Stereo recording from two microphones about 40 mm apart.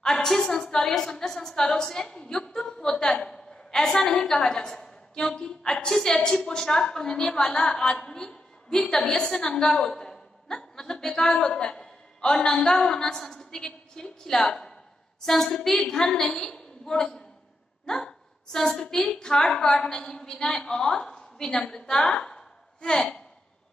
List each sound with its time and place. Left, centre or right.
0.0 s a woman's voice: centre